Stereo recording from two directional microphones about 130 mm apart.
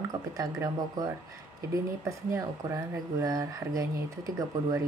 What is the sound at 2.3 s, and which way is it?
Speech, 20° right (ahead or behind).